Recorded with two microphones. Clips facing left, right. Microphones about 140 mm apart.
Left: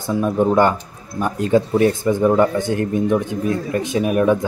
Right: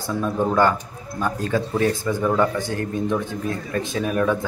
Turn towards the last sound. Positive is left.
turn(degrees=15)  # may be behind; listen again after turning